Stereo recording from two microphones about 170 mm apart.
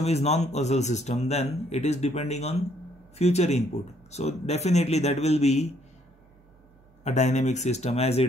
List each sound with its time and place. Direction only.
0.0 s speech: 40° left (ahead or behind)
7.0 s speech: 40° left (ahead or behind)